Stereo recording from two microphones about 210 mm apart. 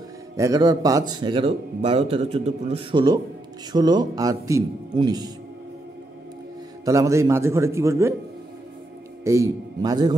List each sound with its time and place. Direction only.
0.4 s a man's voice: 15° right (ahead or behind)
6.8 s speech: 15° right (ahead or behind)
9.2 s speech: 15° right (ahead or behind)